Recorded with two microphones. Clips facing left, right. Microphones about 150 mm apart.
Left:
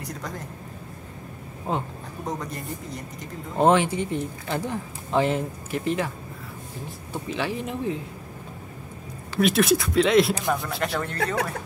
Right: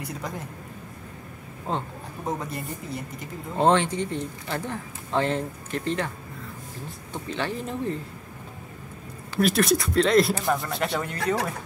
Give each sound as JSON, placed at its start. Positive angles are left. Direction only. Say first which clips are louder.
{"t": 0.0, "sound": "speech", "louder": "right 1 dB", "side_deg": -10}
{"t": 1.7, "sound": "speech", "louder": "left 2 dB", "side_deg": 10}
{"t": 2.2, "sound": "speech", "louder": "right 1 dB", "side_deg": -5}
{"t": 3.5, "sound": "speech", "louder": "left 2 dB", "side_deg": 10}
{"t": 9.3, "sound": "speech", "louder": "left 1 dB", "side_deg": 0}